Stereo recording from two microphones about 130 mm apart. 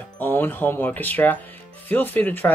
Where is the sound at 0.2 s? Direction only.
15° left (ahead or behind).